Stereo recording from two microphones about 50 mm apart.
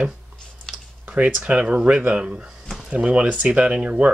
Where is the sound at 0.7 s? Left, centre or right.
Centre.